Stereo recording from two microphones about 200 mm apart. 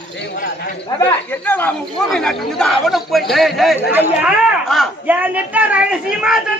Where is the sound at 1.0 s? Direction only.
10° left (ahead or behind).